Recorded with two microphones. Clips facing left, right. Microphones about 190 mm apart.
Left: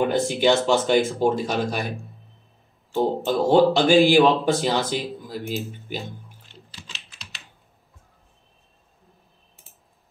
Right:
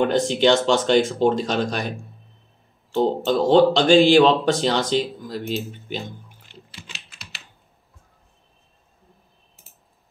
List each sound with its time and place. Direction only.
0.0 s speech: 5° left (ahead or behind)
3.3 s speech: 10° left (ahead or behind)